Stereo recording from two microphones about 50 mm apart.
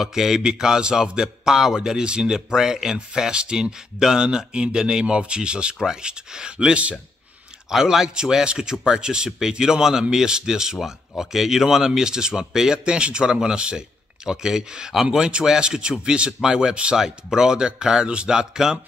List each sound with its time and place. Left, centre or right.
0.0 s a man's voice: centre; by 7.0 s right
7.7 s a man's voice: centre